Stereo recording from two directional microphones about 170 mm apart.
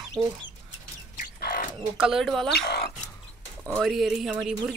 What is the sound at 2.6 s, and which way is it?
Speech, 75° left (ahead or behind).